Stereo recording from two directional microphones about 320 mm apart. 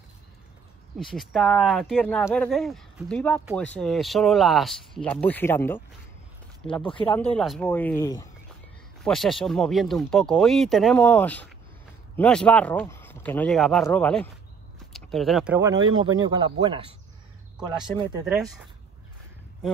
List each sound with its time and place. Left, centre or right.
0.9 s speech: centre
6.9 s speech: centre
7.3 s speech: centre
18.2 s speech: centre